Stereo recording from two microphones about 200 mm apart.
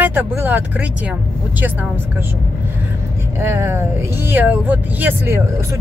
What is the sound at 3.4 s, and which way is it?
Speech, 15° right (ahead or behind).